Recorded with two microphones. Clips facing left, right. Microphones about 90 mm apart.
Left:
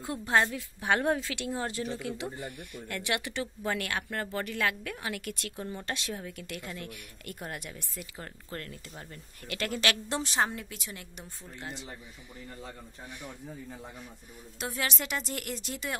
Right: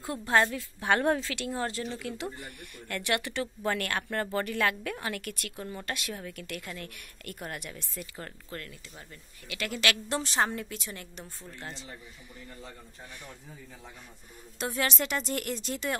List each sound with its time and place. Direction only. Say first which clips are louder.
0.0 s a woman's voice: right 1 dB; 20° left (ahead or behind); by 5.2 s 5° left (ahead or behind)
5.2 s a woman's voice: left 1 dB; 20° left (ahead or behind)
8.5 s speech: left 1 dB; 35° left (ahead or behind)
10.3 s a woman's voice: right 1 dB; 5° left (ahead or behind)
14.6 s speech: right 3 dB; 5° left (ahead or behind)